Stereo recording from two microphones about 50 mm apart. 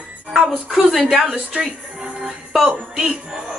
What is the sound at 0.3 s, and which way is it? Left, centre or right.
Speech, centre.